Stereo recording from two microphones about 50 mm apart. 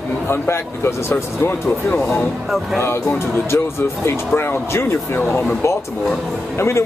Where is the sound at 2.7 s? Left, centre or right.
Left.